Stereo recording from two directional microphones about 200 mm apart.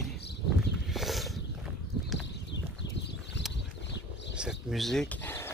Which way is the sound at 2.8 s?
60° left (ahead or behind).